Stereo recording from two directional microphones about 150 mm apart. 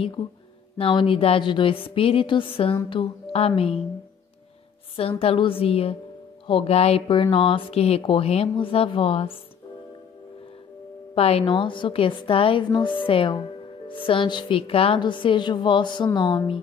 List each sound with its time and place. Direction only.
0.2 s speech: 50° left (ahead or behind)
0.7 s speech: 40° left (ahead or behind)
5.2 s speech: 35° left (ahead or behind)
11.1 s speech: 40° left (ahead or behind)